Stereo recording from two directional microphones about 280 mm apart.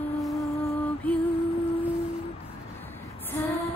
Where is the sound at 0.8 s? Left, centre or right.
Centre.